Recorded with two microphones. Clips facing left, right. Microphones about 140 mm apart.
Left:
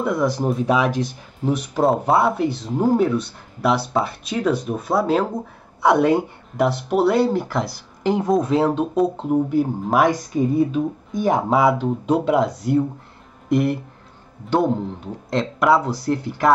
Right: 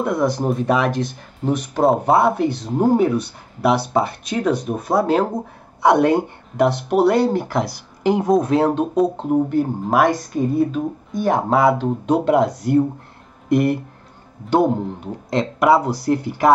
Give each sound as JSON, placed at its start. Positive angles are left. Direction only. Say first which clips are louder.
{"t": 0.0, "sound": "speech", "louder": "right 1 dB", "side_deg": 0}
{"t": 10.5, "sound": "speech", "louder": "right 1 dB", "side_deg": 0}